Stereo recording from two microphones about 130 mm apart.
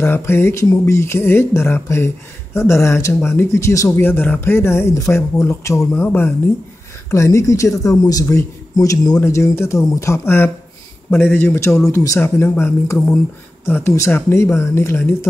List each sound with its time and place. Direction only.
0.0 s speech: 20° left (ahead or behind)